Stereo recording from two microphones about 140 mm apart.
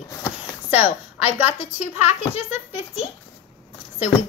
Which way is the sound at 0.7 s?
45° left (ahead or behind).